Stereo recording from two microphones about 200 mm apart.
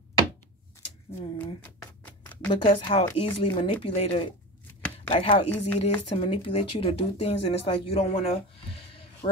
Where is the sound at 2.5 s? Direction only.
25° left (ahead or behind).